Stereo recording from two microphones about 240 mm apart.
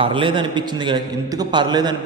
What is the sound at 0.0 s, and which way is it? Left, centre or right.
A man's voice, right.